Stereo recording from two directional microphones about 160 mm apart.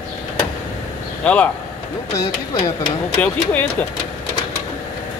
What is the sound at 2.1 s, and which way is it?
Speech, 20° left (ahead or behind).